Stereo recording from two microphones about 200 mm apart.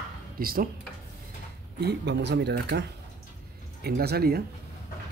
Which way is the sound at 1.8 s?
60° right (ahead or behind).